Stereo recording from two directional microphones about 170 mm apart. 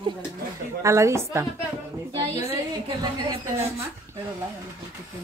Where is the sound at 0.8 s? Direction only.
15° right (ahead or behind).